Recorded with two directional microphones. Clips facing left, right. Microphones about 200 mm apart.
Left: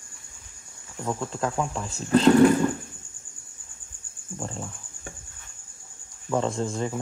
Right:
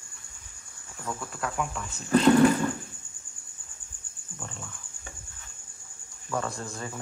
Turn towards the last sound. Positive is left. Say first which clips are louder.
# left 8 dB
turn(degrees=20)  # may be behind; listen again after turning